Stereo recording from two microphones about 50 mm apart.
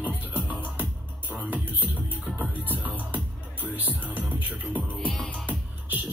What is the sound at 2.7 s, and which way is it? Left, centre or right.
Music, right.